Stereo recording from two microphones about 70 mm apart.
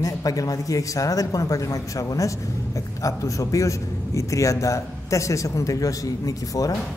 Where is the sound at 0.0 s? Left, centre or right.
Left.